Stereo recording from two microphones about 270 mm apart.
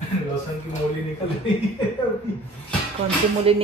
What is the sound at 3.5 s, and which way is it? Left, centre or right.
Music, right.